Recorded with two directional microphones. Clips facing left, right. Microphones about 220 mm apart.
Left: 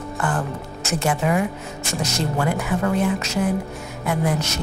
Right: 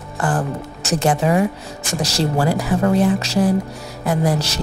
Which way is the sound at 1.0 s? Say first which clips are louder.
Right 4 dB; 30° right (ahead or behind).